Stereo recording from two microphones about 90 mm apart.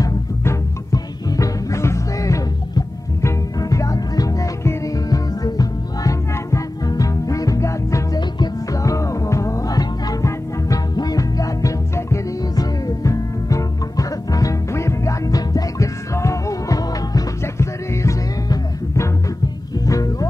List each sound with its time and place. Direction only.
0.0 s music: 35° left (ahead or behind)